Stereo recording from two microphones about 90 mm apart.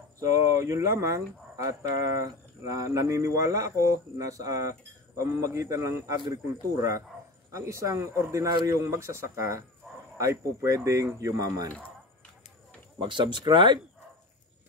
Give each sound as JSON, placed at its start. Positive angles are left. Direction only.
{"t": 0.2, "sound": "speech", "side_deg": -35}
{"t": 13.0, "sound": "speech", "side_deg": -65}